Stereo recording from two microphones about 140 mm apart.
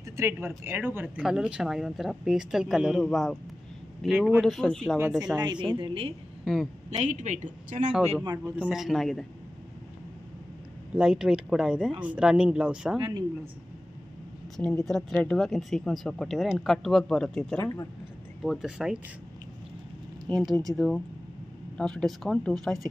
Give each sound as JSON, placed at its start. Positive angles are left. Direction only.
{"t": 0.2, "sound": "a man's voice", "side_deg": -15}
{"t": 5.4, "sound": "speech", "side_deg": -35}
{"t": 6.4, "sound": "a woman's voice", "side_deg": 0}
{"t": 6.9, "sound": "speech", "side_deg": -55}
{"t": 8.5, "sound": "speech", "side_deg": -5}
{"t": 11.0, "sound": "speech", "side_deg": -5}
{"t": 14.6, "sound": "speech", "side_deg": 5}
{"t": 20.3, "sound": "speech", "side_deg": 0}